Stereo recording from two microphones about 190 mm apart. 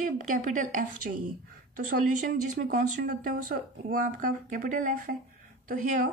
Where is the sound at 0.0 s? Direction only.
45° right (ahead or behind).